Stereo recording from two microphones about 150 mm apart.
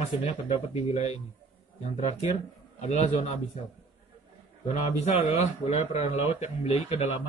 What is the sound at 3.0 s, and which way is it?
Speech, 50° left (ahead or behind).